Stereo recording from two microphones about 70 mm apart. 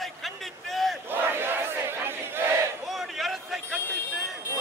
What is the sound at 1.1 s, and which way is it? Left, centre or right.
Battle cry, right.